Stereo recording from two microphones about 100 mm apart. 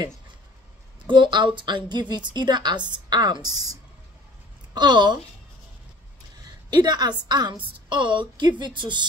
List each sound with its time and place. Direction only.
1.0 s a woman's voice: 50° right (ahead or behind)
4.7 s a woman's voice: 45° right (ahead or behind)
6.4 s a woman's voice: 45° right (ahead or behind)